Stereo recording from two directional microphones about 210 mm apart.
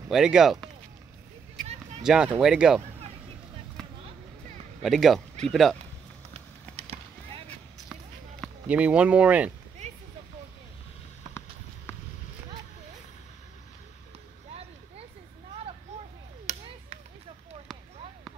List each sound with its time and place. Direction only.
0.1 s speech: 5° right (ahead or behind)
2.0 s speech: 5° right (ahead or behind)
4.8 s speech: centre (ahead or behind)
6.8 s a sound: 30° right (ahead or behind)
7.4 s basketball bounce: centre (ahead or behind)
16.4 s chop: 30° right (ahead or behind)